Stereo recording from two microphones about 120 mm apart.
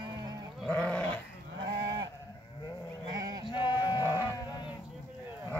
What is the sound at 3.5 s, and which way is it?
Sheep, 40° left (ahead or behind).